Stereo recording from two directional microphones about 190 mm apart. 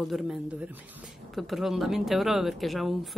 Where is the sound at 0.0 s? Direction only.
Centre (ahead or behind).